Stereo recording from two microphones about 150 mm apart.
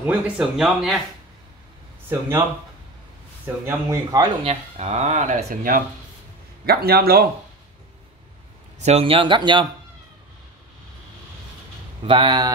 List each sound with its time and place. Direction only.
0.0 s speech: 5° right (ahead or behind)
2.0 s speech: 15° right (ahead or behind)
3.4 s speech: 20° right (ahead or behind)
4.5 s speech: 45° right (ahead or behind); by 5.8 s 70° right (ahead or behind)
6.6 s a man's voice: 90° right
8.7 s speech: 45° right (ahead or behind)
12.0 s speech: 35° right (ahead or behind)